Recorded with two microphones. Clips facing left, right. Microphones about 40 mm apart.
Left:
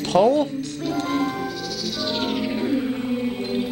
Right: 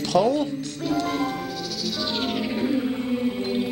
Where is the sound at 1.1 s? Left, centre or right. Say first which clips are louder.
Left 3 dB; centre.